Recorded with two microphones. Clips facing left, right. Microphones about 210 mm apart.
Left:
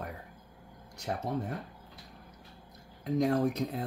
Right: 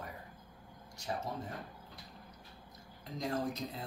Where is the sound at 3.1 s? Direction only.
65° left (ahead or behind).